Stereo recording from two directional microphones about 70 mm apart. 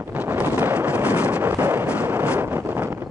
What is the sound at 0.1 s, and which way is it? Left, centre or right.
Wind noise, right.